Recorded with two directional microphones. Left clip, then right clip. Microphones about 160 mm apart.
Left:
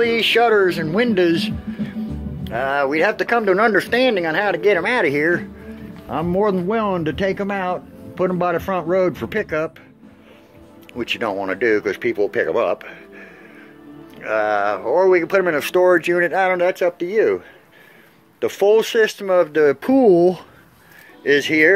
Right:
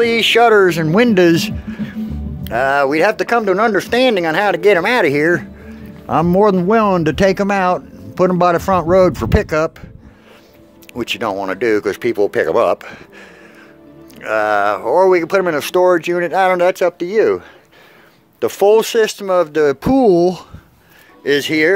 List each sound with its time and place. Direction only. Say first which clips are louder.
0.0 s a man's voice: right 4 dB; 40° right (ahead or behind); by 2.0 s 60° right (ahead or behind)
2.4 s speech: right 6 dB; 50° right (ahead or behind); by 3.9 s 25° right (ahead or behind)
3.9 s speech: right 4 dB; 40° right (ahead or behind)
10.9 s speech: right 3 dB; 30° right (ahead or behind)
14.2 s speech: right 4 dB; 35° right (ahead or behind)
16.5 s speech: right 4 dB; 40° right (ahead or behind); by 20.4 s 15° right (ahead or behind)
21.2 s speech: right 1 dB; 30° right (ahead or behind)